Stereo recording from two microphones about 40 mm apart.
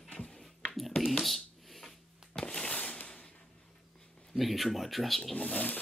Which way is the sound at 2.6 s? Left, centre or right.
Left.